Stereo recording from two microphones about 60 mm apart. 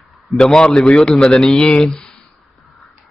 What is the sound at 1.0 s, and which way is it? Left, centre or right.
Speech, centre.